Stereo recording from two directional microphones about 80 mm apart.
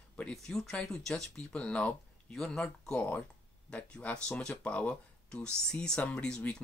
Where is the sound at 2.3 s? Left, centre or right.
Centre.